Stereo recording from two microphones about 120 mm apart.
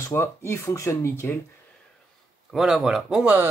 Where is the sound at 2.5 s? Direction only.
5° right (ahead or behind).